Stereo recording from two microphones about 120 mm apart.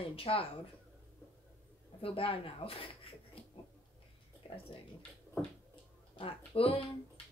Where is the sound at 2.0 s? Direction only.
50° left (ahead or behind).